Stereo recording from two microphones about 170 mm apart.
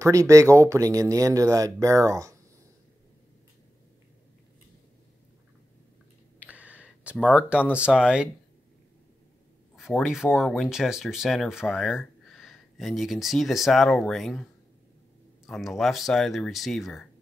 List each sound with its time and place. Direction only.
0.0 s speech: 20° right (ahead or behind)
6.4 s a sound: 10° right (ahead or behind)
7.3 s speech: 5° right (ahead or behind)
9.8 s speech: centre (ahead or behind)